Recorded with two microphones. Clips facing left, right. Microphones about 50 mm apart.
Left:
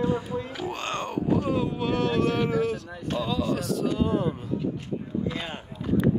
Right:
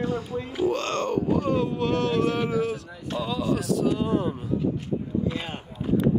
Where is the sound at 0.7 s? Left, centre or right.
Centre.